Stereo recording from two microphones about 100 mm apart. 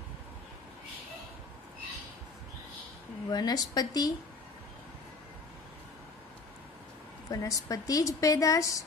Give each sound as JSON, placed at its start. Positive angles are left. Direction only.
{"t": 3.3, "sound": "a woman's voice", "side_deg": 40}
{"t": 7.2, "sound": "a woman's voice", "side_deg": 35}